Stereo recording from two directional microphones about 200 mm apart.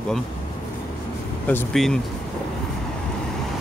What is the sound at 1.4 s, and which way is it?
Speech, 5° left (ahead or behind).